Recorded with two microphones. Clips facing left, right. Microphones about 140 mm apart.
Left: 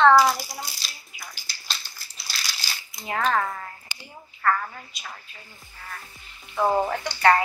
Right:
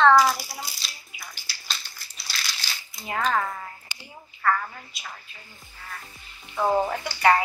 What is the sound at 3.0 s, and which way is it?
Speech, centre (ahead or behind).